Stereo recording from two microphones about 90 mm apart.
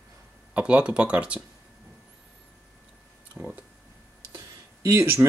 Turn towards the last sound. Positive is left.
turn(degrees=-30)  # may be behind; listen again after turning